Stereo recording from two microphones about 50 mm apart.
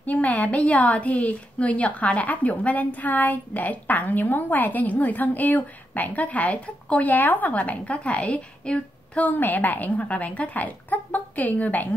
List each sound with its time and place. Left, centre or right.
0.0 s a woman's voice: left